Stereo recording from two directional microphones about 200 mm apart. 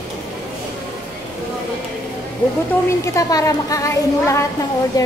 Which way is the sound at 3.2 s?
15° left (ahead or behind).